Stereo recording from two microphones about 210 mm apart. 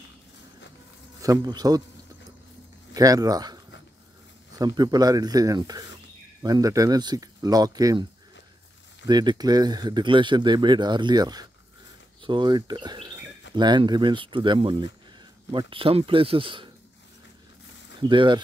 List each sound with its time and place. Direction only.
1.2 s speech: 15° right (ahead or behind)
2.9 s speech: 15° right (ahead or behind)
18.0 s speech: 20° right (ahead or behind)